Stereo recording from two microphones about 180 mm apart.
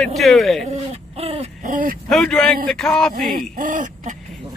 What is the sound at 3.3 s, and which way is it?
Speech, 50° right (ahead or behind).